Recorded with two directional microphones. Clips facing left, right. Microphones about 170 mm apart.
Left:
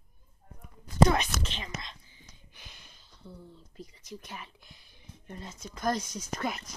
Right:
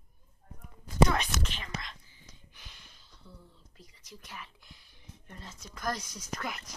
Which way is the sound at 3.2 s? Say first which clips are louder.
Left 6 dB; 40° left (ahead or behind).